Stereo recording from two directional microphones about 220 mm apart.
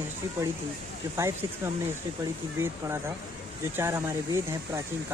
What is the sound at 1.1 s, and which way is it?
Speech, 10° right (ahead or behind).